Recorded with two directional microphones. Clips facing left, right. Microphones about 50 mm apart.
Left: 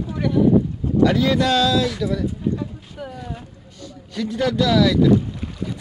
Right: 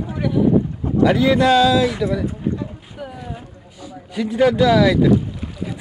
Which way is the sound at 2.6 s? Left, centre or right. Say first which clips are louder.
Right 1 dB; centre.